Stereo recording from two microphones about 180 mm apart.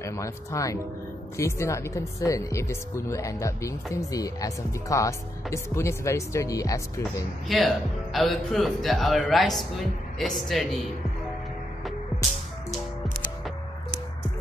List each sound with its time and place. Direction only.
0.0 s speech: 15° left (ahead or behind)
7.4 s speech: centre (ahead or behind)